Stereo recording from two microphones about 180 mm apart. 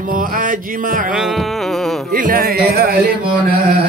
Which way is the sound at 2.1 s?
50° right (ahead or behind).